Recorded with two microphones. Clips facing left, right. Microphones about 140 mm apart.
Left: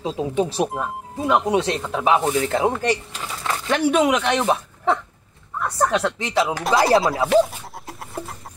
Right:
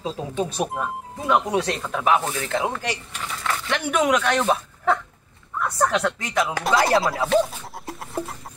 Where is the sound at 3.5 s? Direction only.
40° left (ahead or behind).